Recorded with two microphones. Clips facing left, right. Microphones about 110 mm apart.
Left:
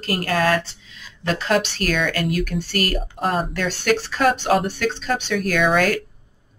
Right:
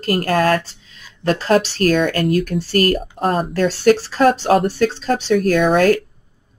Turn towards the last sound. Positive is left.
turn(degrees=-45)  # may be behind; listen again after turning